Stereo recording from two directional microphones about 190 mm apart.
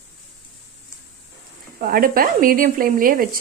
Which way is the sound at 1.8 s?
50° right (ahead or behind).